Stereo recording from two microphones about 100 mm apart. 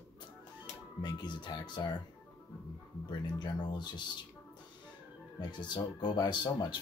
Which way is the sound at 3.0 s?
50° left (ahead or behind).